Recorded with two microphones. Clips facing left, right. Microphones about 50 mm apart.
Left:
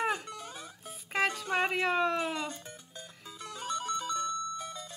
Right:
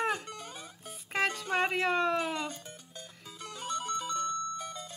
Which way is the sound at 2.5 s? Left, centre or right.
Left.